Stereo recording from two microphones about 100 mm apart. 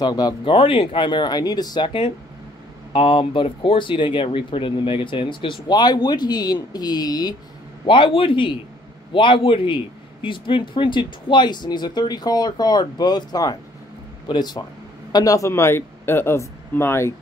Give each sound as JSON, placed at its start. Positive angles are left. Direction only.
{"t": 0.0, "sound": "speech", "side_deg": 40}
{"t": 0.5, "sound": "speech", "side_deg": 65}
{"t": 7.8, "sound": "speech", "side_deg": 60}
{"t": 15.1, "sound": "speech", "side_deg": 35}